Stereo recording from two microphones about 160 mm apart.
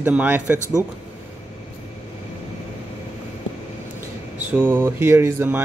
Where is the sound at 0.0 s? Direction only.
10° right (ahead or behind).